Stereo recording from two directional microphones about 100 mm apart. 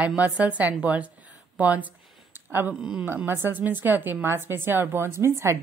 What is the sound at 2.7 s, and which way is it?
Speech, 10° right (ahead or behind).